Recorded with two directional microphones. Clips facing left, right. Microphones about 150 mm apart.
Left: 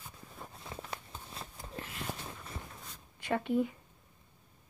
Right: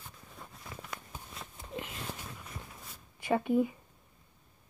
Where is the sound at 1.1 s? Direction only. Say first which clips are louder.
Right 1 dB; 10° right (ahead or behind).